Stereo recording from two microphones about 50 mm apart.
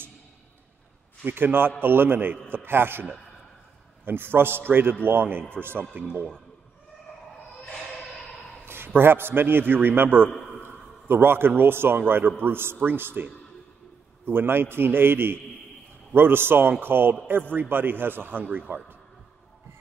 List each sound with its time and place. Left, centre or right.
1.2 s a man's voice: right
8.6 s a man's voice: right